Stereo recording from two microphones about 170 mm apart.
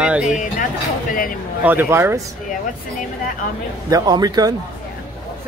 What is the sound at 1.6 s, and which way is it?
Speech, 10° right (ahead or behind).